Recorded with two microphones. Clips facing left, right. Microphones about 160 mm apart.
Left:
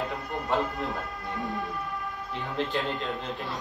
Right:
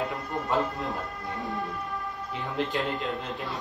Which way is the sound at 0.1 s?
Centre (ahead or behind).